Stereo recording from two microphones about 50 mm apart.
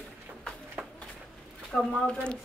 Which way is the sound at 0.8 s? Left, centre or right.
Right.